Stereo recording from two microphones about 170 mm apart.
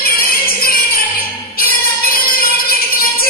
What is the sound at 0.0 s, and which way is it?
Music, 60° left (ahead or behind).